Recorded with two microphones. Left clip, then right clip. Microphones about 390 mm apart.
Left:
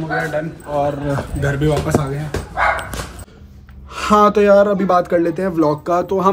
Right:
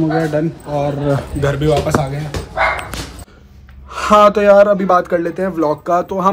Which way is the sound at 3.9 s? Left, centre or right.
Centre.